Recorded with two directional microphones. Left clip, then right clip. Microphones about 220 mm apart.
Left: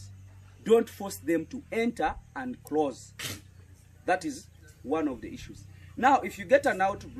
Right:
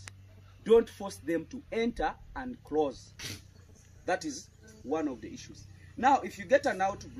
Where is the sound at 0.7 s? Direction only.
10° right (ahead or behind).